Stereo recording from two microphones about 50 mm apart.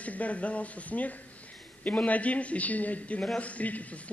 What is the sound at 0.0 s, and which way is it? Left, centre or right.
A man's voice, left.